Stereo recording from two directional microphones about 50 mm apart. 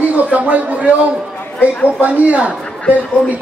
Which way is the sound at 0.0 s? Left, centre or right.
Right.